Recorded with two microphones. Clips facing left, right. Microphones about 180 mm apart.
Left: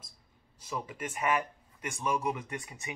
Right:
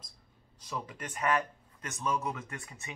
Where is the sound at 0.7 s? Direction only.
5° left (ahead or behind).